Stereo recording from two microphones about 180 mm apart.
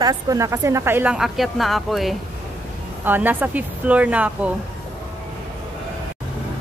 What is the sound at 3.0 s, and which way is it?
Speech, 10° right (ahead or behind).